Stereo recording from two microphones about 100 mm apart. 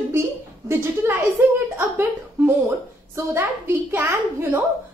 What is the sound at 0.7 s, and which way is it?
Speech, 25° right (ahead or behind).